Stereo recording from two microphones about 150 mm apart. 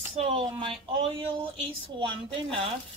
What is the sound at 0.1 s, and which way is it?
Speech, 40° right (ahead or behind).